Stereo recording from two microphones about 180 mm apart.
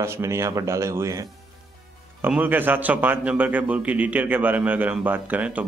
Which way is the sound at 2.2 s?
10° right (ahead or behind).